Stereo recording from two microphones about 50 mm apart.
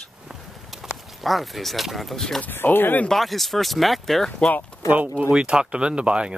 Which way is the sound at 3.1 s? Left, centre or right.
Centre.